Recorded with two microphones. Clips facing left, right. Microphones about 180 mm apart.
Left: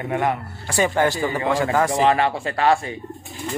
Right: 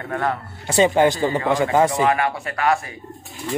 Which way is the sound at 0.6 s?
20° right (ahead or behind).